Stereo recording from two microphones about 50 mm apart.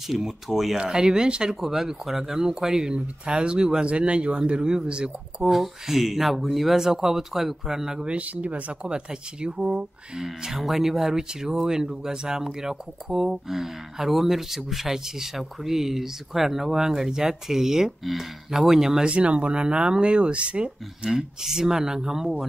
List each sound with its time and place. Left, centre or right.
0.1 s speech: centre
1.6 s speech: centre
5.5 s speech: centre
8.2 s speech: right
8.8 s speech: centre
19.1 s speech: right